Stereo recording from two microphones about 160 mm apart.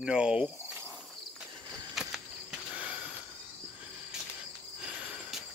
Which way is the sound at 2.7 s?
10° right (ahead or behind).